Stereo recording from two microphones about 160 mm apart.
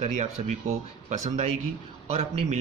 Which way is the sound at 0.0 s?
45° right (ahead or behind).